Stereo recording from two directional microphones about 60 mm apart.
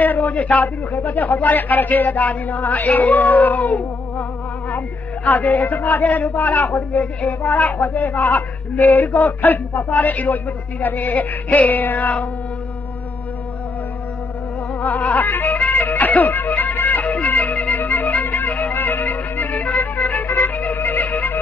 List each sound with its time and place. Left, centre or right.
0.0 s a woman's voice: left
14.8 s music: left